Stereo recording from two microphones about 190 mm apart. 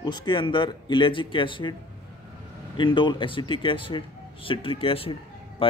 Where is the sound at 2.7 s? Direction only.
25° left (ahead or behind).